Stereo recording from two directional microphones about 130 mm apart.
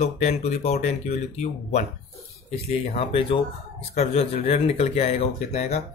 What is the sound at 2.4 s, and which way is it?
Speech, 45° left (ahead or behind).